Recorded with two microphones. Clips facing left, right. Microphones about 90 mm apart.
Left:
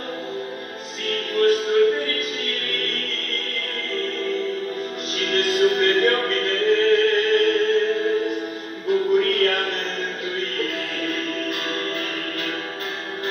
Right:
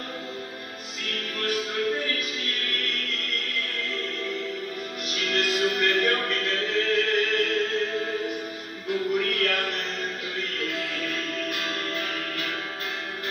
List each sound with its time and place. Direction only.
1.0 s music: 35° left (ahead or behind)
8.9 s music: 40° left (ahead or behind)
11.4 s music: 35° left (ahead or behind)